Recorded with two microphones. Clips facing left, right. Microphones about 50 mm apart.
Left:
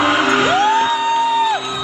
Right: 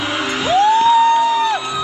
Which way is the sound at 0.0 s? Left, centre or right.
Left.